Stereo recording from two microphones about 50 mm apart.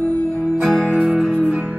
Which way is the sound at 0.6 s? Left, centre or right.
Centre.